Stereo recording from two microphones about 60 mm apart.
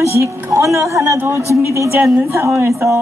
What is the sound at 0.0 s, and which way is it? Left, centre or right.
A woman's voice, right.